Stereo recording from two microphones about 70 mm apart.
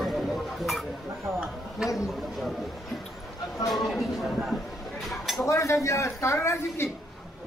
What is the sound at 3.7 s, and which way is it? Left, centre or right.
Speech, centre.